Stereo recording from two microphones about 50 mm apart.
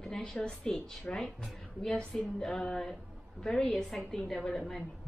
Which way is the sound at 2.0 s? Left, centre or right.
Centre.